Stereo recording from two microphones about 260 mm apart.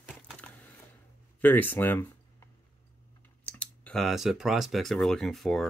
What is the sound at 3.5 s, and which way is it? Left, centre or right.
Speech, centre.